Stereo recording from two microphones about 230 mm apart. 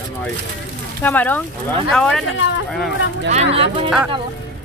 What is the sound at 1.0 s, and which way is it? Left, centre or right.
Speech, centre.